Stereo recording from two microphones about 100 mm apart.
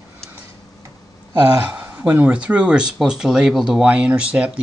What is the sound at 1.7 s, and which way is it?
Speech, 20° right (ahead or behind).